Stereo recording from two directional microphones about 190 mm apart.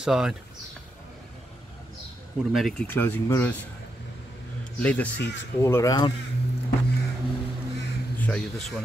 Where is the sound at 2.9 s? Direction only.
10° left (ahead or behind).